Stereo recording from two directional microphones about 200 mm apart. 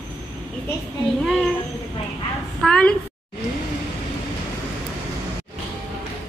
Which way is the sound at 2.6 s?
5° left (ahead or behind).